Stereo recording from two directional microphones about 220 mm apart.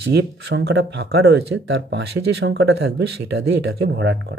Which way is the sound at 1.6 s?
60° right (ahead or behind).